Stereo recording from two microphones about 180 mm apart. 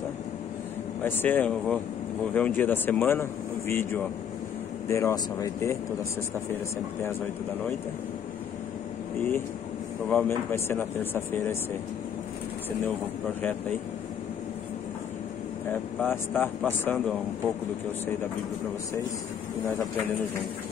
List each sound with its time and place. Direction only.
1.0 s speech: 10° left (ahead or behind)
10.0 s speech: 10° left (ahead or behind)
16.1 s speech: 10° left (ahead or behind)